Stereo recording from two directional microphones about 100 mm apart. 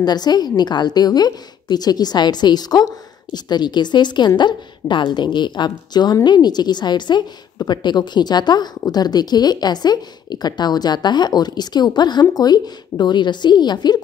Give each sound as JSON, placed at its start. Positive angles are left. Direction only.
{"t": 0.0, "sound": "a woman's voice", "side_deg": 45}